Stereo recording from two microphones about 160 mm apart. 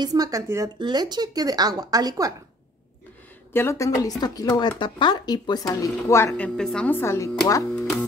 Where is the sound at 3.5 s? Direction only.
15° left (ahead or behind).